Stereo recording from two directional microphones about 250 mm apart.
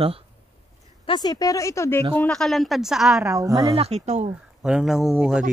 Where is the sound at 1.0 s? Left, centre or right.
Centre.